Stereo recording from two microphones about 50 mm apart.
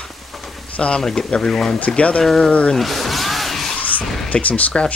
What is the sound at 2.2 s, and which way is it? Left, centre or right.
Speech, centre.